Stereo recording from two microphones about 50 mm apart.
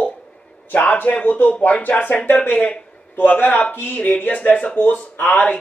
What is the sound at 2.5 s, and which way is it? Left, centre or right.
Speech, left.